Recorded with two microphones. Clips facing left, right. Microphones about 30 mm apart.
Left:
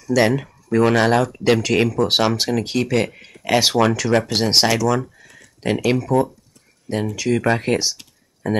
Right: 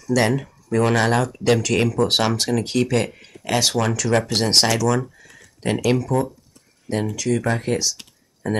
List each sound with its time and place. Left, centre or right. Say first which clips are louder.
0.0 s speech: left 2 dB; centre
3.3 s speech: left 3 dB; centre
4.1 s speech: left 1 dB; centre; by 8.0 s left
8.4 s speech: left 2 dB; centre